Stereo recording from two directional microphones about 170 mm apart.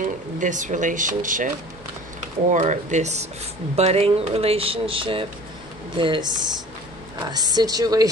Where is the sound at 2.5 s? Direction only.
45° right (ahead or behind).